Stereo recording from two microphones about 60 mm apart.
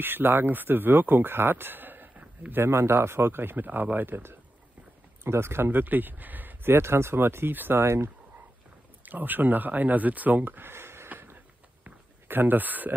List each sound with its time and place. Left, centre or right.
0.0 s speech: right
2.5 s speech: right
9.0 s speech: right
11.1 s a sound: right